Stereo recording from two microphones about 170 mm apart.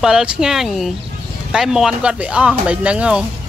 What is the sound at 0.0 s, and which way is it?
Speech, 5° right (ahead or behind).